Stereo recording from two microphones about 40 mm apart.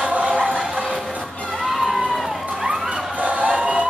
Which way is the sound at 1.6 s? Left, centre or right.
Centre.